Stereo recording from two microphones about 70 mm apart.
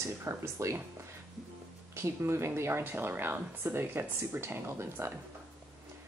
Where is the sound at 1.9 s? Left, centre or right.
Right.